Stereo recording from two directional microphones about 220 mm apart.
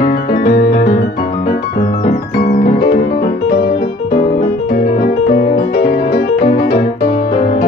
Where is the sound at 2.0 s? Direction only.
40° left (ahead or behind).